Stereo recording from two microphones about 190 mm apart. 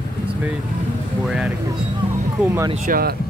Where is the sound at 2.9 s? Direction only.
50° right (ahead or behind).